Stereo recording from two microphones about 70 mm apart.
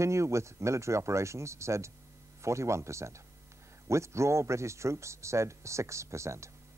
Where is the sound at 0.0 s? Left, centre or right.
Right.